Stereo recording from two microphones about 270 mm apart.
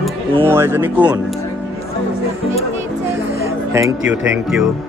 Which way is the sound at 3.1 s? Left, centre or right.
Centre.